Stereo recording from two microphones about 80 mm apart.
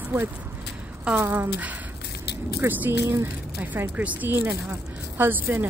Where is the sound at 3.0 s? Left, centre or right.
Right.